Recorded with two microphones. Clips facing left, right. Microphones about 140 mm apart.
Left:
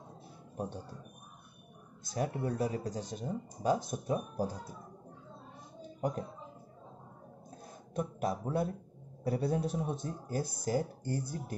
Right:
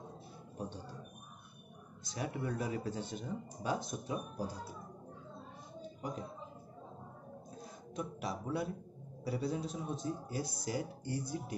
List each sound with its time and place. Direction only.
2.0 s speech: 40° left (ahead or behind)
5.9 s speech: 55° left (ahead or behind)
7.9 s a man's voice: 50° left (ahead or behind)
10.6 s a man's voice: 45° left (ahead or behind)